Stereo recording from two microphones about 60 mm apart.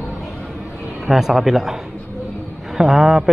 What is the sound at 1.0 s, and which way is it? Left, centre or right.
A man's voice, centre.